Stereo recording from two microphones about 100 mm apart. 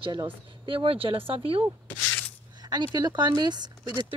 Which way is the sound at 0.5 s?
60° right (ahead or behind).